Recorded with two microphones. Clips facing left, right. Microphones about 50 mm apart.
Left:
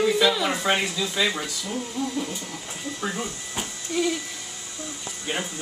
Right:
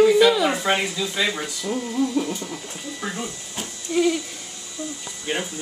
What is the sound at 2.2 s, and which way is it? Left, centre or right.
Speech, centre.